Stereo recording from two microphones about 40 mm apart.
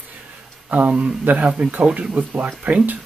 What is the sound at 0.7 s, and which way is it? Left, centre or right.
Speech, right.